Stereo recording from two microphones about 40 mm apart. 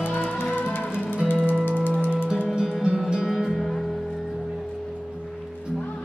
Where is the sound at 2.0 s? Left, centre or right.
Right.